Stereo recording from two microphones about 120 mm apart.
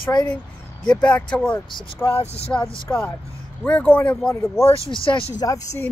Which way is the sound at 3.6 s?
10° left (ahead or behind).